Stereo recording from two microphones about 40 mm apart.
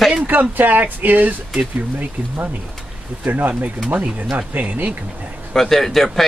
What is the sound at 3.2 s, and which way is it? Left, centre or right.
Speech, right.